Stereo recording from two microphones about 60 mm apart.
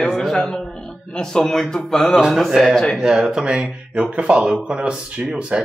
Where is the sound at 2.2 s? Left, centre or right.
Centre.